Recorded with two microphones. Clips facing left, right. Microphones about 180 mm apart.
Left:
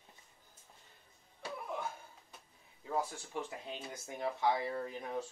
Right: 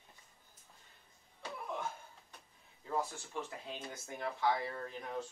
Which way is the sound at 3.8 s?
15° left (ahead or behind).